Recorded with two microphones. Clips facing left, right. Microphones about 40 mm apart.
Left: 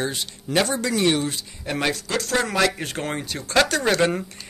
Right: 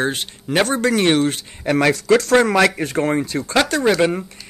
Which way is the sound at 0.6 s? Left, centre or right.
Right.